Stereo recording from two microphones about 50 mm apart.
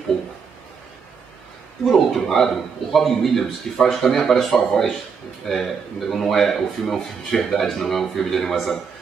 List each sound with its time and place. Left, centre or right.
1.9 s speech: centre